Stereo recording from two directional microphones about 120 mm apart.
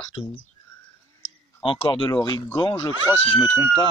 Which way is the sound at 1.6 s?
45° left (ahead or behind).